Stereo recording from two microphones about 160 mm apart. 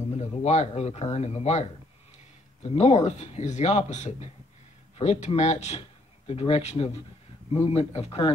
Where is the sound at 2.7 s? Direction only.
40° left (ahead or behind).